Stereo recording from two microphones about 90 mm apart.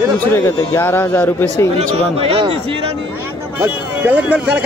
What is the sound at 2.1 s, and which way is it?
Speech, 90° right.